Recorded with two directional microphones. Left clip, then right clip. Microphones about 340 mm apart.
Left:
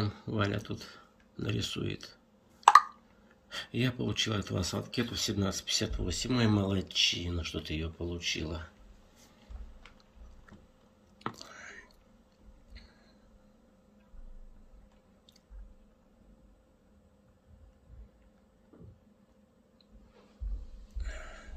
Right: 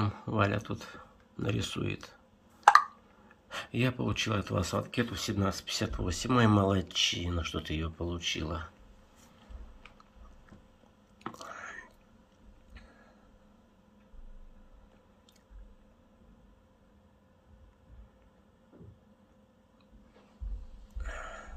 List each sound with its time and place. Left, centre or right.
0.0 s speech: centre
3.4 s speech: centre
11.3 s whispering: centre
21.0 s a sound: centre